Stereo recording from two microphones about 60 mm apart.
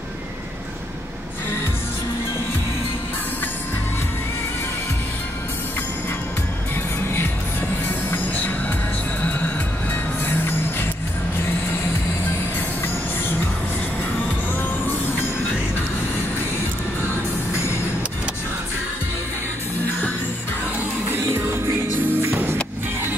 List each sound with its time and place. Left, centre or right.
8.1 s music: left
10.2 s music: left
21.1 s music: right